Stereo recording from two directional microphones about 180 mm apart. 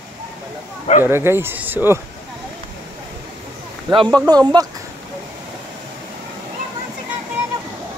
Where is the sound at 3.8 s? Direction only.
25° right (ahead or behind).